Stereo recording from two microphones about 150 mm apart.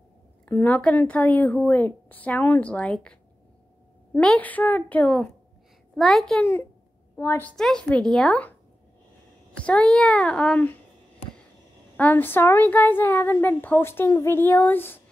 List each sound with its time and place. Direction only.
0.5 s a woman's voice: 10° left (ahead or behind)
7.2 s a woman's voice: 15° left (ahead or behind)
7.5 s speech: 5° left (ahead or behind)
9.6 s a woman's voice: 5° left (ahead or behind)
12.0 s a woman's voice: 10° left (ahead or behind)